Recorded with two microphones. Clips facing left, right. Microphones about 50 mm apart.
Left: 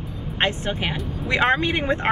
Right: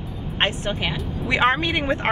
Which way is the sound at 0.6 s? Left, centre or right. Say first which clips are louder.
Even; left.